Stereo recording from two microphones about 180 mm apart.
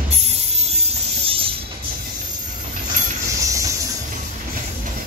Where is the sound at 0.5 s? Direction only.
35° right (ahead or behind).